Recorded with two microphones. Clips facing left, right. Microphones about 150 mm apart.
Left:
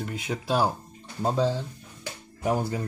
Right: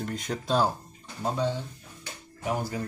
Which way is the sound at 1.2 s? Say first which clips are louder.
Left 4 dB; 30° left (ahead or behind).